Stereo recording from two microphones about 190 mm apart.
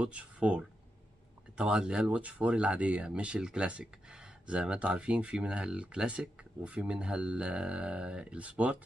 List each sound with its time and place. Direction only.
0.0 s speech: 5° right (ahead or behind)